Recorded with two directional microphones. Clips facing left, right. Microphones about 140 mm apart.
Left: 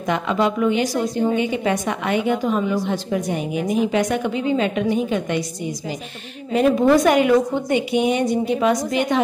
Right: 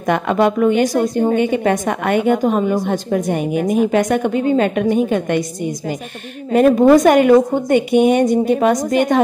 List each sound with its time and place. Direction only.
0.0 s a woman's voice: 55° right (ahead or behind)